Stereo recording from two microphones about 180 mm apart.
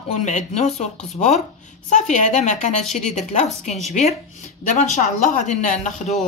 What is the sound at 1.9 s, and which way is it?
Speech, 45° left (ahead or behind).